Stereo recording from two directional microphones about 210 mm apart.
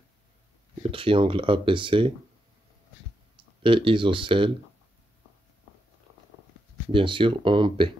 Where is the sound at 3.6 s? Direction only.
25° right (ahead or behind).